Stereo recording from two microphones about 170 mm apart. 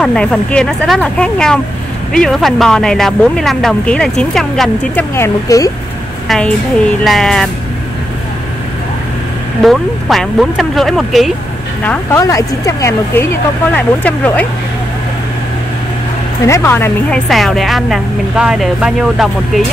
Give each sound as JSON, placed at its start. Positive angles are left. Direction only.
{"t": 0.0, "sound": "speech", "side_deg": 5}
{"t": 5.1, "sound": "speech", "side_deg": 15}
{"t": 6.2, "sound": "a woman's voice", "side_deg": 5}
{"t": 9.6, "sound": "speech", "side_deg": 0}
{"t": 11.8, "sound": "speech", "side_deg": 10}
{"t": 16.4, "sound": "speech", "side_deg": 15}
{"t": 17.3, "sound": "speech", "side_deg": 0}